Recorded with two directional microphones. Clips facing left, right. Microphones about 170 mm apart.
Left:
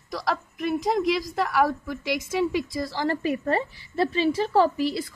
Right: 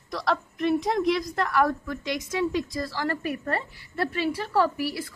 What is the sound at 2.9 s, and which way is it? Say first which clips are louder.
A woman's voice: left 3 dB; 25° left (ahead or behind).